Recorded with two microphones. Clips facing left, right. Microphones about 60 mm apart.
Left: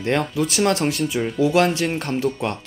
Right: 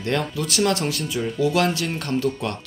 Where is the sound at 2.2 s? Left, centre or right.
Left.